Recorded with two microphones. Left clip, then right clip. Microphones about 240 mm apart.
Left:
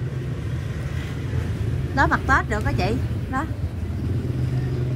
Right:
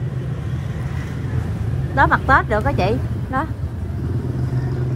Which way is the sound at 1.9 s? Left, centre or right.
Left.